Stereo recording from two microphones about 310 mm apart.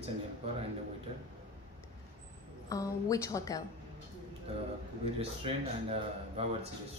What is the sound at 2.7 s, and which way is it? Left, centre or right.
Speech, centre.